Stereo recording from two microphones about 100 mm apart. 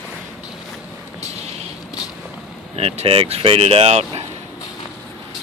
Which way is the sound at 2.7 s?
90° right.